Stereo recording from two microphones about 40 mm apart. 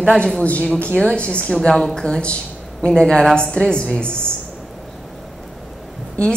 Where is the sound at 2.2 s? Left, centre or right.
Left.